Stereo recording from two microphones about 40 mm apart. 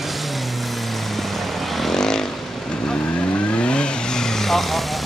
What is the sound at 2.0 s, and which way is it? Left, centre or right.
Vehicle, centre.